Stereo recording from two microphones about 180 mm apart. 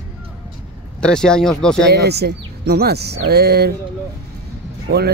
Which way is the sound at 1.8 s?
65° right (ahead or behind).